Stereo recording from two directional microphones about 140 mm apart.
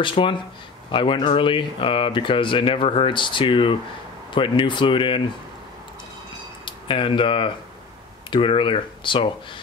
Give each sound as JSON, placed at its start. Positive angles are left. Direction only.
{"t": 0.0, "sound": "speech", "side_deg": 35}
{"t": 6.6, "sound": "speech", "side_deg": 40}